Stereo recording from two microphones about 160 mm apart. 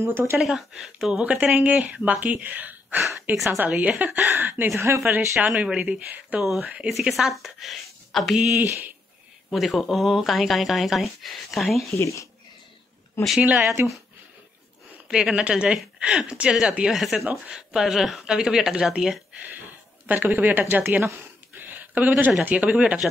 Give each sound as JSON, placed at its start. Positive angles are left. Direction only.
{"t": 0.0, "sound": "speech", "side_deg": -15}
{"t": 0.4, "sound": "speech", "side_deg": 0}
{"t": 11.9, "sound": "speech", "side_deg": 20}
{"t": 13.2, "sound": "speech", "side_deg": -5}
{"t": 15.0, "sound": "speech", "side_deg": -5}